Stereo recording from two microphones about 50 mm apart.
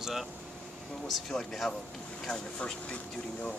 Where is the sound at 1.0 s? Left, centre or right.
Centre.